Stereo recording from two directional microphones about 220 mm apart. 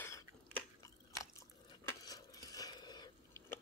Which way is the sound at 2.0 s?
15° left (ahead or behind).